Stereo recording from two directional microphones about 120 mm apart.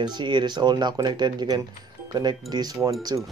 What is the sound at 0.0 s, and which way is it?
Speech, 40° right (ahead or behind).